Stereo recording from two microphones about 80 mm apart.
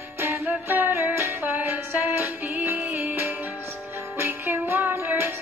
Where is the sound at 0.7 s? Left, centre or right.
Right.